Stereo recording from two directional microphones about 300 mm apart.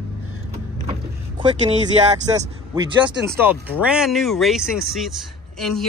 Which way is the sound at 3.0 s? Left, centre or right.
Centre.